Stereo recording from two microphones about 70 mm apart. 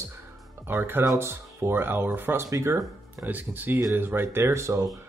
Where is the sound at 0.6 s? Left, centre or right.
Right.